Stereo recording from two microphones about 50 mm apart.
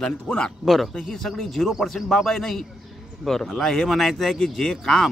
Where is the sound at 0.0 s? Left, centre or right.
Left.